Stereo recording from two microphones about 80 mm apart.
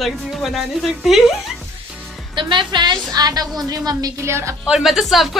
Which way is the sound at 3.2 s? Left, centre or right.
Right.